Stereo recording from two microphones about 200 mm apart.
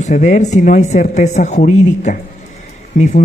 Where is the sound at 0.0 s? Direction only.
40° left (ahead or behind).